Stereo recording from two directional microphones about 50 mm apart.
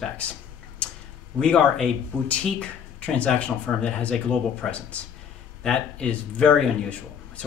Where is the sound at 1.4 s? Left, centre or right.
Centre.